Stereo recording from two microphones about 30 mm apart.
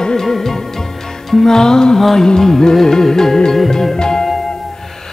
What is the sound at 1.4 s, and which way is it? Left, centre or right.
Music, centre.